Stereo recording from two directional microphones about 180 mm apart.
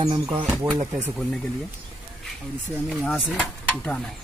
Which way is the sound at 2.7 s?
10° right (ahead or behind).